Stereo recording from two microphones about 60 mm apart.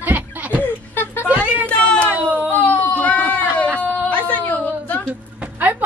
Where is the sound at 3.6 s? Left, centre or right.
Right.